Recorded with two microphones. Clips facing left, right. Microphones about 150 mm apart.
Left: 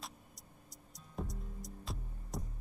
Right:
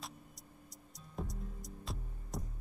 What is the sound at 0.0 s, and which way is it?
Music, centre (ahead or behind).